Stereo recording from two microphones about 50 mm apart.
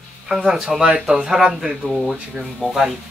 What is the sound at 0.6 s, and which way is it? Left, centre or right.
Speech, centre.